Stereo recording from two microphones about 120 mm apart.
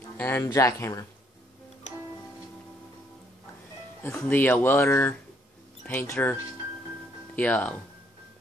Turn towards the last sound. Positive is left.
turn(degrees=15)  # may be behind; listen again after turning